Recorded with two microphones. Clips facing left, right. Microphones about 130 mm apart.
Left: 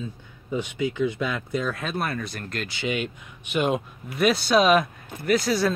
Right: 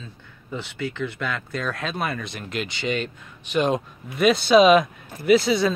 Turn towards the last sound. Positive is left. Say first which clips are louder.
# right 4 dB
turn(degrees=0)  # may be behind; listen again after turning